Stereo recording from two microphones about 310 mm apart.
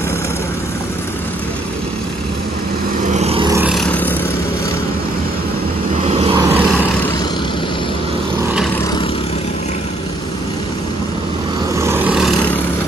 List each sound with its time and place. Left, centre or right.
3.1 s vehicle: centre
6.0 s vehicle: centre
11.8 s vehicle: centre